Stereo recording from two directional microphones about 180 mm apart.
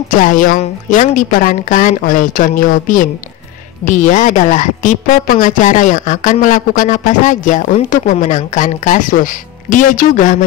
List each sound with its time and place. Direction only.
0.2 s a woman's voice: 50° left (ahead or behind)